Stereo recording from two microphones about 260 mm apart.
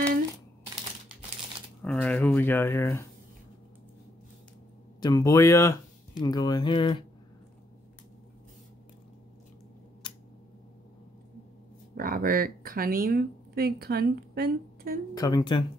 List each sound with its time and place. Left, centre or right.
1.8 s speech: centre
5.0 s speech: centre
10.0 s tick-tock: centre
11.9 s speech: right
15.1 s speech: centre